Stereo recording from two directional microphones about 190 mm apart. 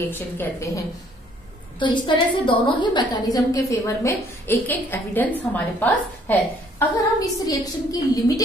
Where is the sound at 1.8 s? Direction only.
25° left (ahead or behind).